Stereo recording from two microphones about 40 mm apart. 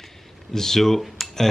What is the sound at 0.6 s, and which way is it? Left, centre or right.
Dishes, centre.